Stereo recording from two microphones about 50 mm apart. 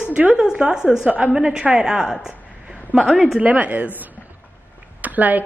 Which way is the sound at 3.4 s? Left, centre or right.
Right.